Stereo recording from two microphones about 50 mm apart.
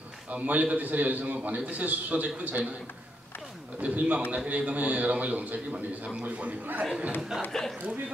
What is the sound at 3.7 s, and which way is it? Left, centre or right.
A man's voice, right.